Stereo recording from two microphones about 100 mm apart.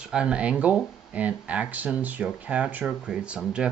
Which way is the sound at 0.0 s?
10° right (ahead or behind).